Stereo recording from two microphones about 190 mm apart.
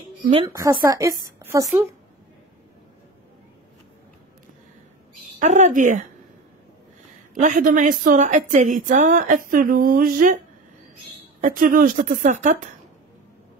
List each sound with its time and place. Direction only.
0.5 s speech: 15° right (ahead or behind)
5.4 s speech: 40° right (ahead or behind)
7.3 s a woman's voice: 45° right (ahead or behind)
11.4 s a woman's voice: 45° right (ahead or behind)